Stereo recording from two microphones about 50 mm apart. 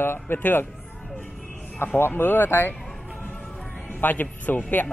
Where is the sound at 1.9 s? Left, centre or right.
Left.